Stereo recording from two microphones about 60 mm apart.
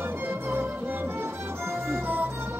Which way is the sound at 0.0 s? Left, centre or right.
Right.